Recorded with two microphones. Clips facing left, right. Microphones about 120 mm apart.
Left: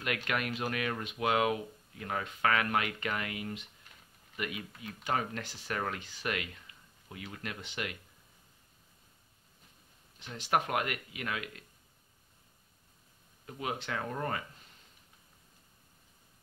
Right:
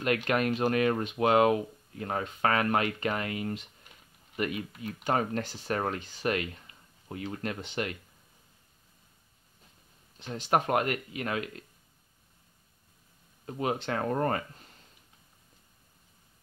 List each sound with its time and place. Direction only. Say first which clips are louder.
0.0 s speech: right 7 dB; 35° right (ahead or behind)
10.2 s speech: right 4 dB; 35° right (ahead or behind)
13.5 s speech: right 6 dB; 35° right (ahead or behind)